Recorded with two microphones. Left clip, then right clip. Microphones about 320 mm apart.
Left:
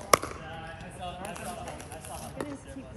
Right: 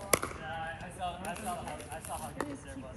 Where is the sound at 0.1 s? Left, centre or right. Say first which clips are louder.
Left 7 dB; centre.